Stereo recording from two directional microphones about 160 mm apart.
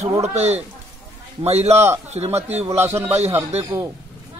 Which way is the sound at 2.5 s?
40° right (ahead or behind).